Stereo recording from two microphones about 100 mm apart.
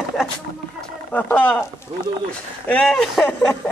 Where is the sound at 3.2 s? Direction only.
10° left (ahead or behind).